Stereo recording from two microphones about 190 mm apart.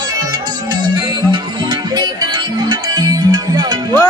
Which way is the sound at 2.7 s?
20° right (ahead or behind).